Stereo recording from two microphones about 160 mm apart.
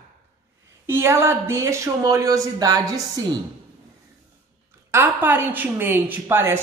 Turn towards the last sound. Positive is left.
turn(degrees=-15)  # may be behind; listen again after turning